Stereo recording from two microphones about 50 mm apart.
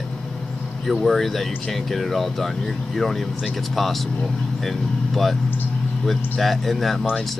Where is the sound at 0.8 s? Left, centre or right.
Centre.